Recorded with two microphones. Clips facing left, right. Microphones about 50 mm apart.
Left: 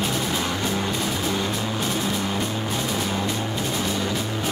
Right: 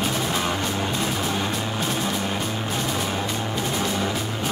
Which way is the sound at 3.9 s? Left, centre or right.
Right.